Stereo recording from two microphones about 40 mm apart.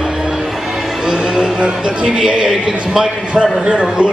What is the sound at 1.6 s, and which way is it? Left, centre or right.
A man's voice, right.